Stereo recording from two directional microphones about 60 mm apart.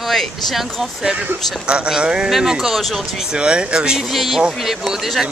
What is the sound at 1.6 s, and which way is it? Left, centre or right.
Speech, centre.